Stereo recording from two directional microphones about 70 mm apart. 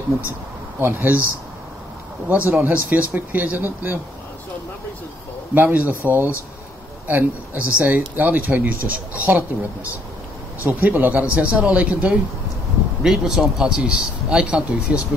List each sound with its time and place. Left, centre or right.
0.7 s speech: right
2.2 s speech: right
5.5 s speech: right
10.6 s speech: right
13.0 s speech: centre